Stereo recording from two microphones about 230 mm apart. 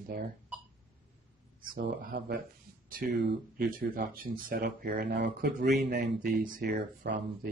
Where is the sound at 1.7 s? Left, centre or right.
Right.